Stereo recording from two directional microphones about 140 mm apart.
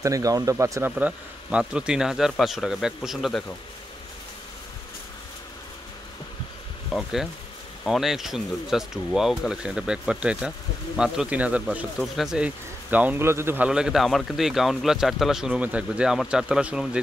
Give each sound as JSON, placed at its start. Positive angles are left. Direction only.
{"t": 0.0, "sound": "speech", "side_deg": -25}
{"t": 0.9, "sound": "a man's voice", "side_deg": -10}
{"t": 6.9, "sound": "a man's voice", "side_deg": 0}
{"t": 13.7, "sound": "a man's voice", "side_deg": -5}